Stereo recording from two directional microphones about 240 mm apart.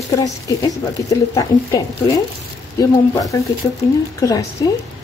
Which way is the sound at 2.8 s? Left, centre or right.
Centre.